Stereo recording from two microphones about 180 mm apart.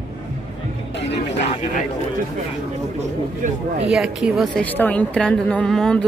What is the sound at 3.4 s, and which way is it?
Speech, 45° right (ahead or behind).